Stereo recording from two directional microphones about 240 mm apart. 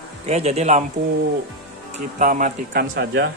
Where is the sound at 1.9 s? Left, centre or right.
Right.